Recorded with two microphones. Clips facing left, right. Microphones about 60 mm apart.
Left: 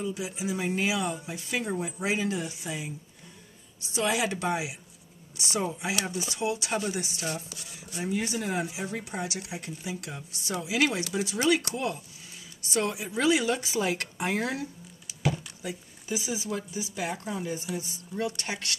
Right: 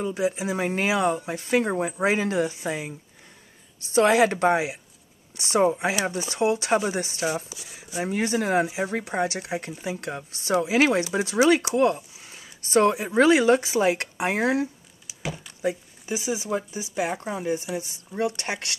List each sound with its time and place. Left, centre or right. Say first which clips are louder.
0.0 s speech: right 7 dB; right
3.9 s a woman's voice: right 9 dB; right
7.5 s speech: right 2 dB; centre
8.0 s a woman's voice: right 6 dB; right